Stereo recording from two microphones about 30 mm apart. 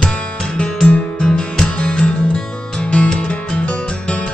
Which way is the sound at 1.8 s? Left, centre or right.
Left.